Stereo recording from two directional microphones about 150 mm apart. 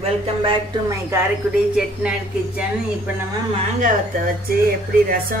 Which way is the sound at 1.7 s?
5° right (ahead or behind).